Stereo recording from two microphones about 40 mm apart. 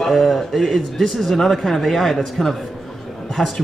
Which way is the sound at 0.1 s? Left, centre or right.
Centre.